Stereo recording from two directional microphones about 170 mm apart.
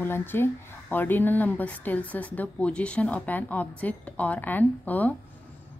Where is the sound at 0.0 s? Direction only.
15° left (ahead or behind).